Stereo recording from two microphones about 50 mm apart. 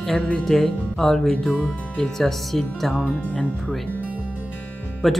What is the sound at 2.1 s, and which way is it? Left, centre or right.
Speech, centre.